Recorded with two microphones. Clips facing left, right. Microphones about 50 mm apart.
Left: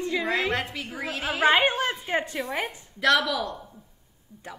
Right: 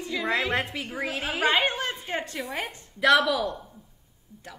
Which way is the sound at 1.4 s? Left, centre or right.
Centre.